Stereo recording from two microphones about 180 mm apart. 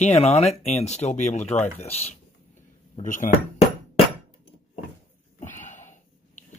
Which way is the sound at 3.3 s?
45° left (ahead or behind).